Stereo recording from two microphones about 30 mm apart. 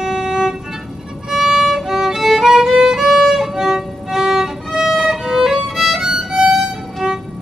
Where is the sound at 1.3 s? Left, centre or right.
Centre.